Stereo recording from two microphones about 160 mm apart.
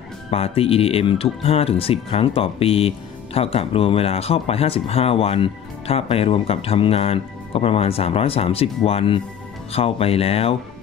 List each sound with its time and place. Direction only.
0.3 s speech: 40° left (ahead or behind)